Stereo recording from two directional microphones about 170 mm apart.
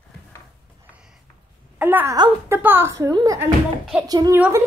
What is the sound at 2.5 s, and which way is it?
A woman's voice, 10° right (ahead or behind).